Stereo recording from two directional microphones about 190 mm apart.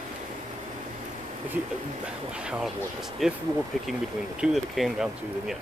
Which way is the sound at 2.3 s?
5° right (ahead or behind).